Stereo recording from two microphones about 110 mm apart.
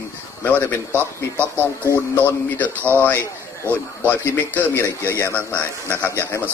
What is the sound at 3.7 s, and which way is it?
Speech, 20° right (ahead or behind).